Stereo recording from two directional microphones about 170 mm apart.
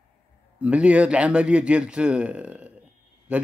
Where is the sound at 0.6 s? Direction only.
5° right (ahead or behind).